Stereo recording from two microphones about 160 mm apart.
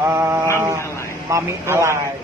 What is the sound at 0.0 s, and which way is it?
Mantra, 15° right (ahead or behind).